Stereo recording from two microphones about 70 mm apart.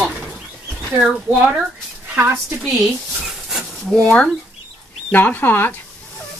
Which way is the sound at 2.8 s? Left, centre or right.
Centre.